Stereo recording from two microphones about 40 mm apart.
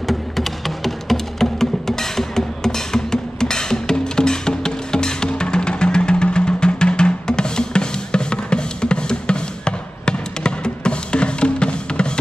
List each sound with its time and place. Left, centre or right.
0.0 s music: centre; by 12.1 s left